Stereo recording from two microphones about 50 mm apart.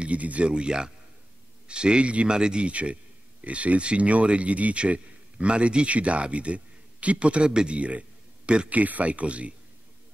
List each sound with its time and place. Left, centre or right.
0.0 s a man's voice: right